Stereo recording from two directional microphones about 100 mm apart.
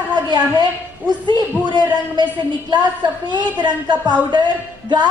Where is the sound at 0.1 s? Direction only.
45° right (ahead or behind).